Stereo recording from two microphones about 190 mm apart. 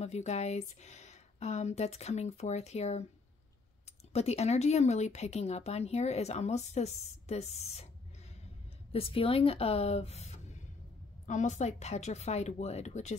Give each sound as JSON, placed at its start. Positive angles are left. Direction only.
{"t": 0.0, "sound": "speech", "side_deg": 35}
{"t": 4.1, "sound": "speech", "side_deg": 35}
{"t": 8.9, "sound": "speech", "side_deg": 30}